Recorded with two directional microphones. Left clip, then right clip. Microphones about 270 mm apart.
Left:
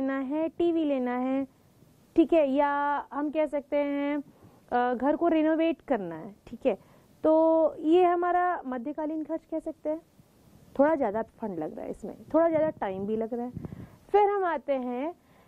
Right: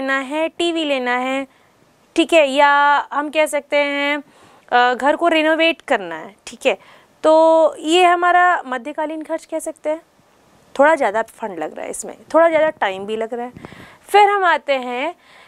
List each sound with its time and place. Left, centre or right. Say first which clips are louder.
0.0 s speech: right 10 dB; centre